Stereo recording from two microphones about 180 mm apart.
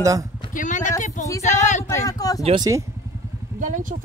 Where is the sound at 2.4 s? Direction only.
30° right (ahead or behind).